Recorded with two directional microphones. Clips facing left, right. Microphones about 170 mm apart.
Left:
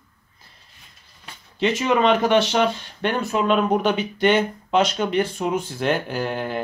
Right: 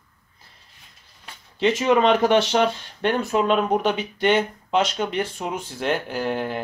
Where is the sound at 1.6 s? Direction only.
30° right (ahead or behind).